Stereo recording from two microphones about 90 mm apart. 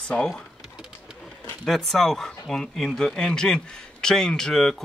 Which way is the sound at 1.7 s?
5° left (ahead or behind).